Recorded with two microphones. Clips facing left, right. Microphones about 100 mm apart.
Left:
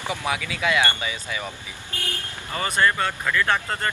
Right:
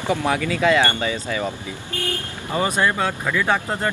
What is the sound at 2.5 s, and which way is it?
Speech, 10° right (ahead or behind).